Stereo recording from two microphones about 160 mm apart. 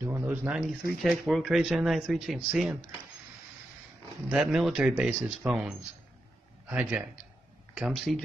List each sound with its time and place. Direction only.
0.0 s speech: 10° right (ahead or behind)
4.3 s a man's voice: 5° right (ahead or behind)